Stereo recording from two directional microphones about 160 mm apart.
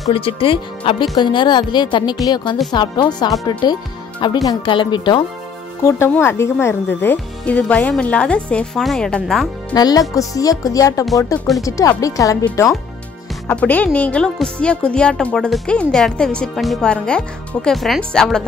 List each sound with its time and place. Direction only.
0.1 s speech: 35° left (ahead or behind)
5.9 s speech: 15° left (ahead or behind)
9.8 s speech: 25° left (ahead or behind)
11.3 s speech: centre (ahead or behind)
11.6 s speech: 20° left (ahead or behind)
13.5 s speech: 10° left (ahead or behind)